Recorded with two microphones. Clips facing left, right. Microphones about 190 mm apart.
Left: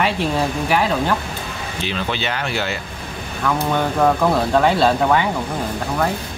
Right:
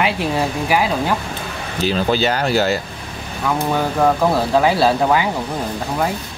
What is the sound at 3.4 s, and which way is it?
Speech, 5° right (ahead or behind).